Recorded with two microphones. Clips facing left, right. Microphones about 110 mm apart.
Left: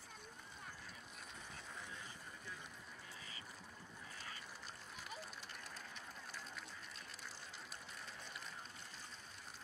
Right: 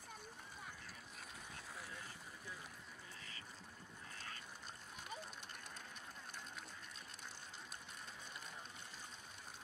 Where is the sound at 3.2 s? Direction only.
15° left (ahead or behind).